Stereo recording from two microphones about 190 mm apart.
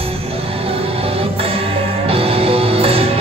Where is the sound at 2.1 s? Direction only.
30° right (ahead or behind).